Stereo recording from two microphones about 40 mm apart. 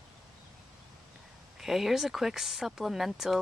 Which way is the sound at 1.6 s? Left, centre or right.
Centre.